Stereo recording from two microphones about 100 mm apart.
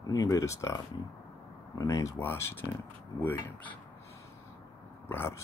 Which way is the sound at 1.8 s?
35° left (ahead or behind).